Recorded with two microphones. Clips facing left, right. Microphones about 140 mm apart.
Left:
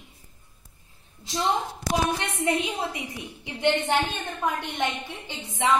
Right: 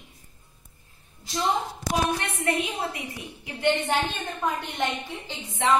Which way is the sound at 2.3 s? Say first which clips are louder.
Left 1 dB; 25° left (ahead or behind).